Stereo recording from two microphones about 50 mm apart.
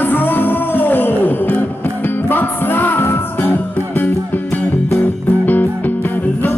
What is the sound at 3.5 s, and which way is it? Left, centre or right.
Music, left.